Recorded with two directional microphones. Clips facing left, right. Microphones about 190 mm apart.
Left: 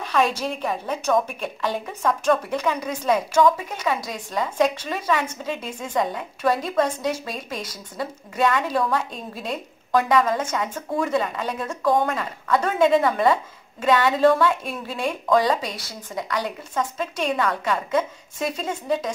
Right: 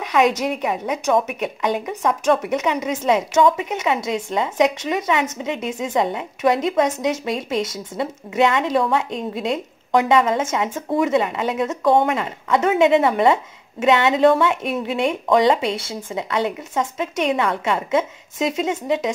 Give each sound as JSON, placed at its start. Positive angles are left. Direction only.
{"t": 0.0, "sound": "a woman's voice", "side_deg": -20}